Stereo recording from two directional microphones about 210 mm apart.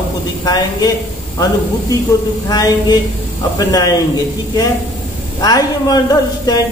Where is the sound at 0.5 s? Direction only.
20° left (ahead or behind).